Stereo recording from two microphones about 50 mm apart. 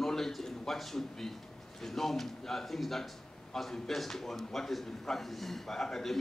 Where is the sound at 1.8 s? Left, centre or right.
Centre.